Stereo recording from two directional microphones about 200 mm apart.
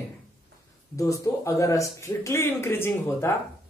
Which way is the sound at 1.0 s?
15° left (ahead or behind).